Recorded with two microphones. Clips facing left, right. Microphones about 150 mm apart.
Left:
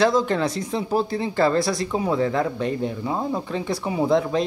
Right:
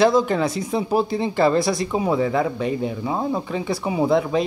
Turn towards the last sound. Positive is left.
turn(degrees=-5)  # may be behind; listen again after turning